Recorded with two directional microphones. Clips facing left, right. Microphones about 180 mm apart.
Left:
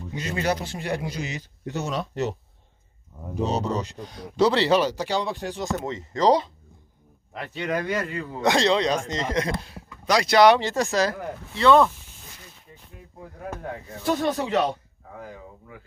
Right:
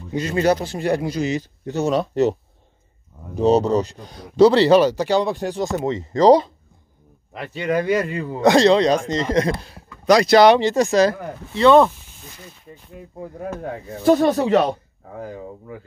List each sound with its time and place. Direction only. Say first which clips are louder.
0.1 s a man's voice: right 8 dB; 35° right (ahead or behind)
3.4 s a man's voice: right 11 dB; 35° right (ahead or behind)
7.3 s speech: right 6 dB; 5° right (ahead or behind)
8.4 s a man's voice: right 7 dB; 40° right (ahead or behind)
10.0 s speech: right 8 dB; 45° right (ahead or behind)
10.3 s speech: right 2 dB; 25° right (ahead or behind)
13.8 s a man's voice: right 9 dB; 40° right (ahead or behind)